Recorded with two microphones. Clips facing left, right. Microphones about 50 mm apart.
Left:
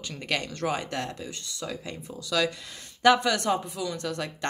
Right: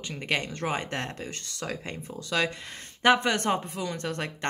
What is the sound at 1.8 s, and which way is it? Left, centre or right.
Speech, right.